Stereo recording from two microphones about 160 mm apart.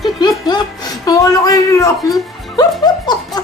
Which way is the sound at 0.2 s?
25° left (ahead or behind).